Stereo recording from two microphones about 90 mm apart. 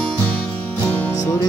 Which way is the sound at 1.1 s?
45° left (ahead or behind).